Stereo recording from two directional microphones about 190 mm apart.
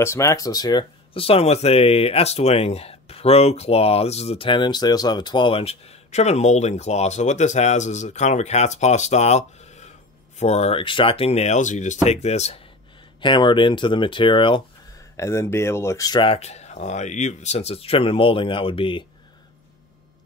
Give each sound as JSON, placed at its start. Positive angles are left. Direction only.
{"t": 0.0, "sound": "speech", "side_deg": 15}
{"t": 13.2, "sound": "speech", "side_deg": 25}
{"t": 15.1, "sound": "speech", "side_deg": 15}